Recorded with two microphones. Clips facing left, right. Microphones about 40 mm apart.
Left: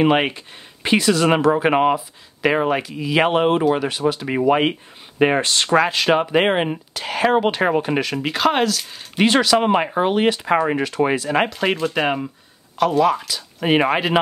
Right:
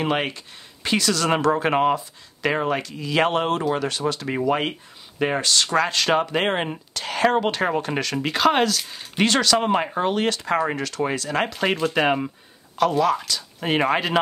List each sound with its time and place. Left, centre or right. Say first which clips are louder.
0.0 s speech: left 7 dB; centre
1.3 s speech: left 4 dB; centre; by 5.8 s left
5.8 s speech: left 4 dB; centre
9.2 s speech: left 4 dB; centre
11.4 s speech: left 2 dB; centre